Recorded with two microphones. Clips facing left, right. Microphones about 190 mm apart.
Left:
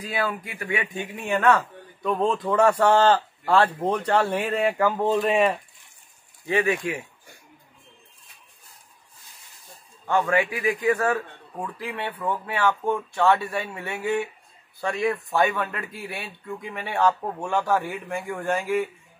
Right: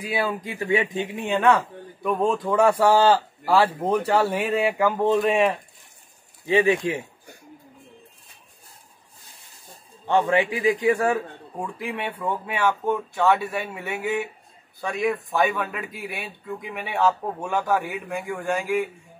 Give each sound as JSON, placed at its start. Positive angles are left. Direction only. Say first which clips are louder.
{"t": 0.0, "sound": "speech", "louder": "right 2 dB", "side_deg": -15}
{"t": 6.4, "sound": "a man's voice", "louder": "right 4 dB", "side_deg": -20}
{"t": 10.0, "sound": "a man's voice", "louder": "right 2 dB", "side_deg": -25}
{"t": 10.9, "sound": "speech", "louder": "right 2 dB", "side_deg": -15}
{"t": 14.8, "sound": "speech", "louder": "even", "side_deg": 0}